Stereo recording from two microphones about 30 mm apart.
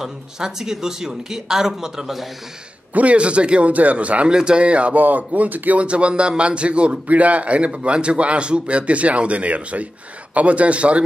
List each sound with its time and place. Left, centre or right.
0.0 s speech: centre
2.9 s a man's voice: right
3.2 s speech: right
3.7 s speech: right
4.3 s speech: right
4.6 s speech: right
4.9 s speech: right
5.8 s speech: right
7.1 s speech: right